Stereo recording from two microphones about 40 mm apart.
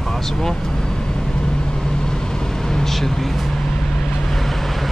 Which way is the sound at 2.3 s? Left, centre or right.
Centre.